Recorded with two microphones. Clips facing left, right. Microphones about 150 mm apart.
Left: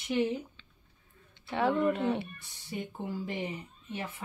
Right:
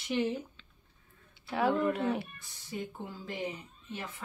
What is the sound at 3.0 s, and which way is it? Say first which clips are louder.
Speech: left 5 dB; 20° left (ahead or behind).